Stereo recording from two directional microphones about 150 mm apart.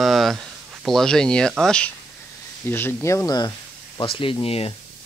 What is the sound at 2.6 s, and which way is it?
Speech, 15° left (ahead or behind).